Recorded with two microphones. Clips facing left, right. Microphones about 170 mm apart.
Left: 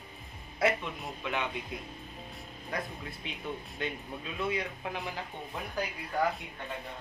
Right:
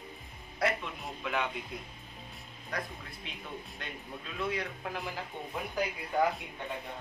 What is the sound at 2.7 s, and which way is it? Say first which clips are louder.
A man's voice: left 2 dB; centre (ahead or behind).